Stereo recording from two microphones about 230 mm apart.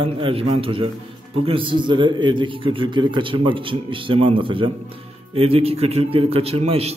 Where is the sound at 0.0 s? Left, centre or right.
Right.